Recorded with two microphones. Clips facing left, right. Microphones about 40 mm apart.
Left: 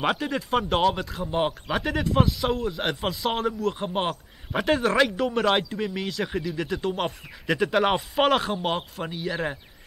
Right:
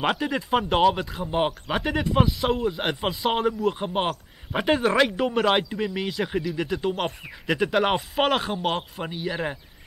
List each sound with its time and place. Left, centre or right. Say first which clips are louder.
0.0 s speech: right 1 dB; centre